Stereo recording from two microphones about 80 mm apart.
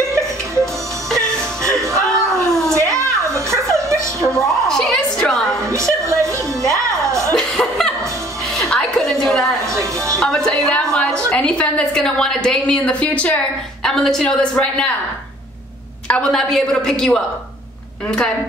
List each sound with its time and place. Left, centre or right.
0.0 s music: right
1.6 s a sound: right
3.6 s music: right
4.2 s music: centre
5.6 s music: right
7.1 s a sound: right
7.3 s chuckle: centre
8.5 s music: centre
9.2 s a sound: centre
9.7 s music: right
10.1 s music: centre
11.2 s a woman's voice: centre
13.8 s a woman's voice: centre
16.1 s a woman's voice: centre